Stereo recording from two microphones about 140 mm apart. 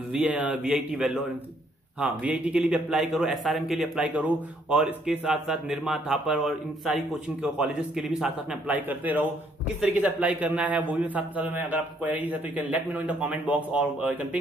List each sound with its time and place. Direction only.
0.1 s a man's voice: 10° right (ahead or behind)